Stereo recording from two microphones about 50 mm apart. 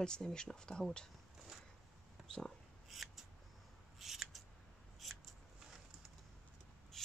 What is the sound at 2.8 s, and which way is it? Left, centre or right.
Scissors, centre.